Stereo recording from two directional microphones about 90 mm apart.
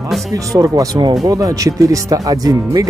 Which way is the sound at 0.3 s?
40° right (ahead or behind).